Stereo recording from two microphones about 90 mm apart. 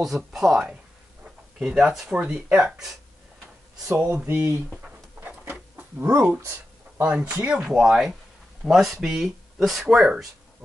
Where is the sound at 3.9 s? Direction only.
20° right (ahead or behind).